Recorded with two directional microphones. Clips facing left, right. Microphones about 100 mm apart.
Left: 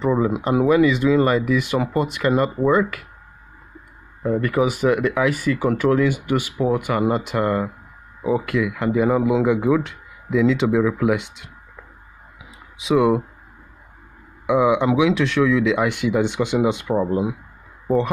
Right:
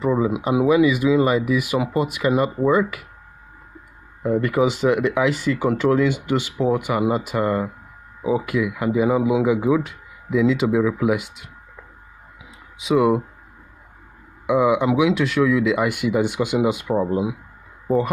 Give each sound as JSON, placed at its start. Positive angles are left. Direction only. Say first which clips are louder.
{"t": 0.0, "sound": "speech", "louder": "left 1 dB", "side_deg": -5}
{"t": 4.2, "sound": "speech", "louder": "right 1 dB", "side_deg": -20}
{"t": 12.7, "sound": "speech", "louder": "even", "side_deg": 0}
{"t": 14.4, "sound": "speech", "louder": "even", "side_deg": 0}